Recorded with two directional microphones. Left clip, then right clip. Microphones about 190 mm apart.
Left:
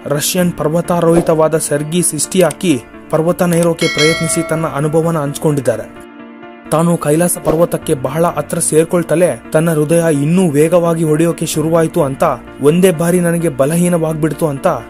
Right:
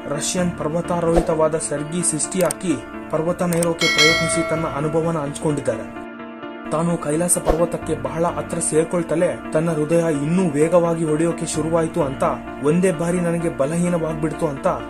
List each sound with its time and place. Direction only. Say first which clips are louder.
0.1 s speech: left 8 dB; 40° left (ahead or behind)
3.8 s speech: left 3 dB; centre (ahead or behind)
4.7 s speech: left 7 dB; 35° left (ahead or behind)
6.7 s speech: left 9 dB; 40° left (ahead or behind)